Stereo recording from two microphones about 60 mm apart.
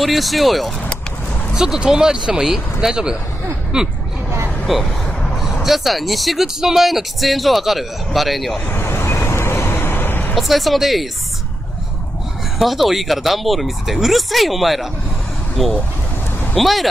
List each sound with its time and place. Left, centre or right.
0.0 s speech: centre
1.5 s speech: centre
4.7 s speech: centre
8.6 s vehicle: left
10.3 s speech: centre
12.5 s speech: centre